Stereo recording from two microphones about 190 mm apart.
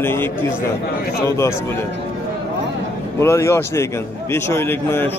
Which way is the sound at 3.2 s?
15° left (ahead or behind).